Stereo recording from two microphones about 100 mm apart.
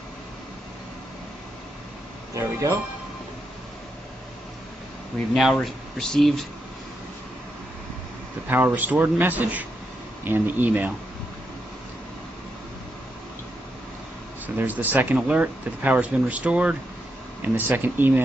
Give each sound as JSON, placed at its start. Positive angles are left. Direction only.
{"t": 2.3, "sound": "speech", "side_deg": -30}
{"t": 5.3, "sound": "speech", "side_deg": 0}
{"t": 8.5, "sound": "speech", "side_deg": -20}
{"t": 14.4, "sound": "speech", "side_deg": -15}